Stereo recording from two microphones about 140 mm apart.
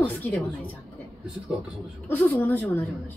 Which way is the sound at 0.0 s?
10° left (ahead or behind).